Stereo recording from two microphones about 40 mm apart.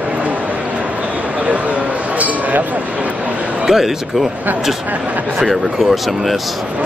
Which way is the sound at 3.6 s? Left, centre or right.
Centre.